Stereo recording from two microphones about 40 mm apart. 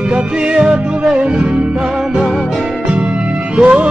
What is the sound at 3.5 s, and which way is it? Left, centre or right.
Music, right.